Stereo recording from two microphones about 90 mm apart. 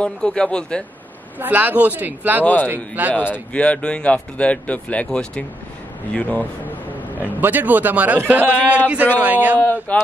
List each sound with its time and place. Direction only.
0.0 s speech: 10° left (ahead or behind)
1.4 s a man's voice: 20° right (ahead or behind)
2.4 s speech: 20° left (ahead or behind)
2.7 s a man's voice: 20° right (ahead or behind)
3.2 s speech: 15° left (ahead or behind)
7.3 s a man's voice: 20° right (ahead or behind)
9.6 s speech: 20° left (ahead or behind)